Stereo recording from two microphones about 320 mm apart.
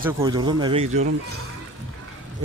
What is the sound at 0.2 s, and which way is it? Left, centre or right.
Speech, centre.